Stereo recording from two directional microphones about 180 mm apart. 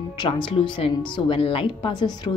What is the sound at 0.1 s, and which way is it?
Speech, 25° left (ahead or behind).